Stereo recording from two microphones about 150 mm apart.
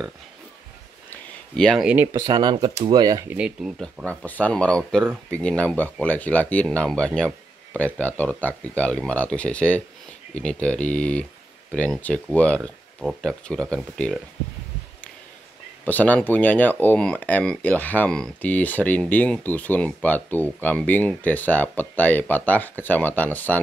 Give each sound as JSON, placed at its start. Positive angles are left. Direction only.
{"t": 1.1, "sound": "a sound", "side_deg": 5}
{"t": 1.9, "sound": "speech", "side_deg": -15}
{"t": 2.2, "sound": "speech", "side_deg": -30}
{"t": 3.3, "sound": "speech", "side_deg": -5}
{"t": 4.1, "sound": "speech", "side_deg": 10}
{"t": 15.8, "sound": "speech", "side_deg": 10}